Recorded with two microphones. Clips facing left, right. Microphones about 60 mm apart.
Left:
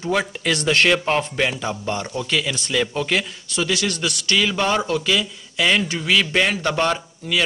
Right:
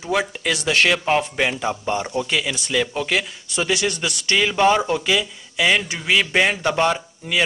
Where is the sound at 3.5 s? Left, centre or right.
Centre.